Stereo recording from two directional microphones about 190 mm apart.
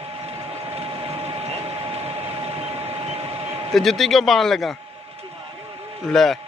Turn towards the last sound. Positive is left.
turn(degrees=0)  # may be behind; listen again after turning